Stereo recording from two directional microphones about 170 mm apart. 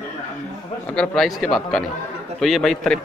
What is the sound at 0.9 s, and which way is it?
Speech, centre (ahead or behind).